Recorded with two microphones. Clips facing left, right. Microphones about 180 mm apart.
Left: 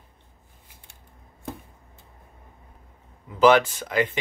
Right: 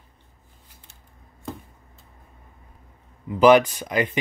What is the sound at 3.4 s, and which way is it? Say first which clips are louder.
Speech: right 3 dB; 15° right (ahead or behind).